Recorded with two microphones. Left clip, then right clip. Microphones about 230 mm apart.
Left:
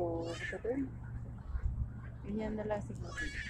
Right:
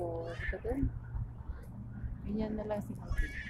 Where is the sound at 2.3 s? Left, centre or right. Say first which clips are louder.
Right 1 dB; centre.